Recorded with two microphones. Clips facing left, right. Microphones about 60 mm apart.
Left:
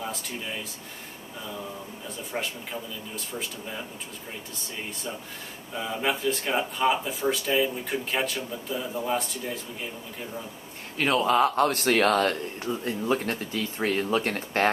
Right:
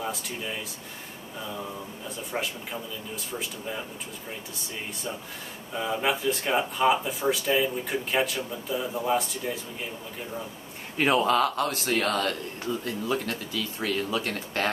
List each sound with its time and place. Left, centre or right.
0.0 s speech: centre
2.0 s speech: centre
5.8 s speech: centre
11.0 s a man's voice: centre
11.5 s speech: left
12.6 s speech: left
13.0 s speech: left